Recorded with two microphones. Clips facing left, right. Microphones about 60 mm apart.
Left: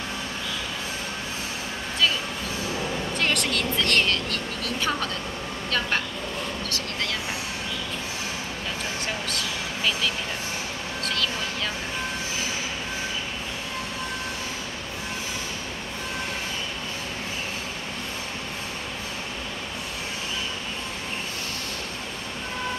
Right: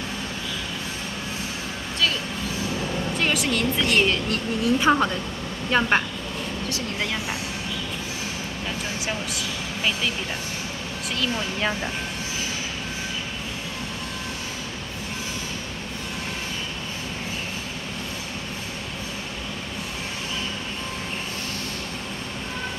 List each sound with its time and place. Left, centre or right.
3.2 s speech: centre; by 6.0 s right